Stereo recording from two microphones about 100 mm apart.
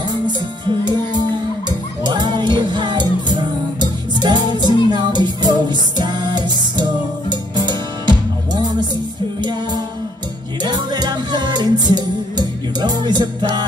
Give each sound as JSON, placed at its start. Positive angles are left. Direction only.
{"t": 0.7, "sound": "music", "side_deg": -50}
{"t": 9.4, "sound": "music", "side_deg": -50}